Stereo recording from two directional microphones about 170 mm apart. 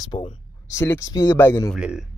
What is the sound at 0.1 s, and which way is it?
Speech, 35° left (ahead or behind).